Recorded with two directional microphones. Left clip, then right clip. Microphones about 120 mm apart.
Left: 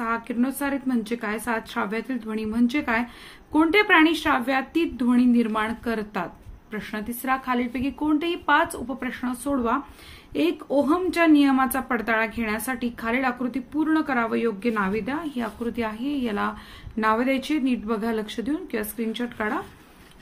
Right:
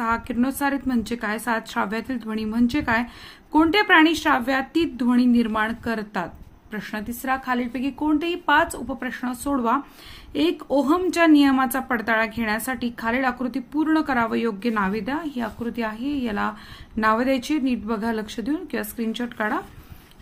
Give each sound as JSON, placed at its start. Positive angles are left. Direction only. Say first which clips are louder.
{"t": 0.0, "sound": "a woman's voice", "louder": "right 2 dB", "side_deg": -40}
{"t": 10.3, "sound": "a woman's voice", "louder": "right 1 dB", "side_deg": -45}
{"t": 15.1, "sound": "a woman's voice", "louder": "right 1 dB", "side_deg": -25}